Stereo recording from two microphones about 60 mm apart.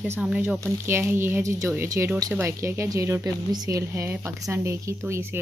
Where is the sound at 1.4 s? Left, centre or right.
Right.